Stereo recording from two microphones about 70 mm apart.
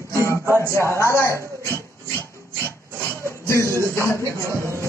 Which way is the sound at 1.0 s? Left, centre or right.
Left.